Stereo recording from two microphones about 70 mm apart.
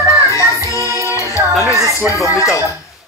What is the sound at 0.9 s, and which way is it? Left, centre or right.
Music, right.